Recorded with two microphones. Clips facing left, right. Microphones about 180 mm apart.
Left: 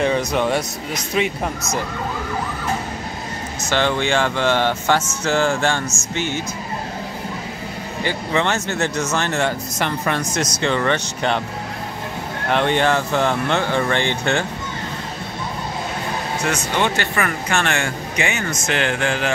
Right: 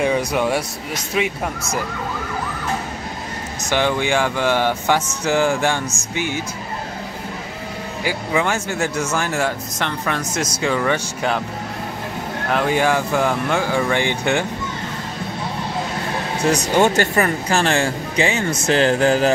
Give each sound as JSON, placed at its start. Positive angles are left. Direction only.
{"t": 0.0, "sound": "speech", "side_deg": -10}
{"t": 3.7, "sound": "speech", "side_deg": -10}
{"t": 8.0, "sound": "speech", "side_deg": -10}
{"t": 9.8, "sound": "speech", "side_deg": 5}
{"t": 12.4, "sound": "speech", "side_deg": -5}
{"t": 16.4, "sound": "speech", "side_deg": -40}